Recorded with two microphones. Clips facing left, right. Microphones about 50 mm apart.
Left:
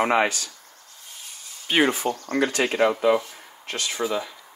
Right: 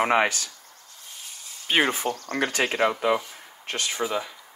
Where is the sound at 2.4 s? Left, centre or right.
Right.